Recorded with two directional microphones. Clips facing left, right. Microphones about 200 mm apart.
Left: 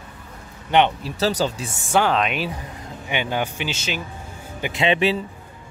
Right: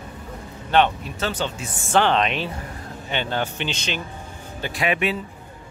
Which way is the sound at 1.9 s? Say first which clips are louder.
Even; 5° left (ahead or behind).